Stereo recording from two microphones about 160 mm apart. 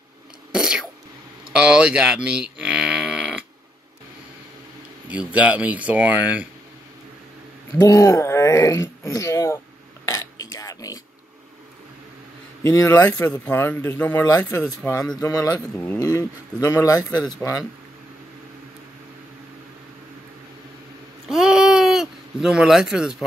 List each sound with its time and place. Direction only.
0.5 s a sound: 5° right (ahead or behind)
1.5 s speech: 5° right (ahead or behind)
5.0 s speech: 10° right (ahead or behind)
7.8 s speech: 20° left (ahead or behind)
10.0 s burping: 20° left (ahead or behind)
12.6 s speech: 15° left (ahead or behind)
21.3 s a sound: 5° right (ahead or behind)